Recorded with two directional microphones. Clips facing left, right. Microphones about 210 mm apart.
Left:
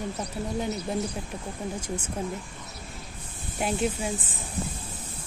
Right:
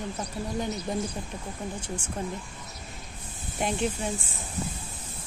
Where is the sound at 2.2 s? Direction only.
5° left (ahead or behind).